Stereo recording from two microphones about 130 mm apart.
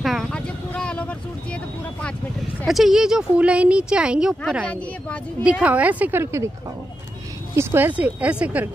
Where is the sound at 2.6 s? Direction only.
Centre (ahead or behind).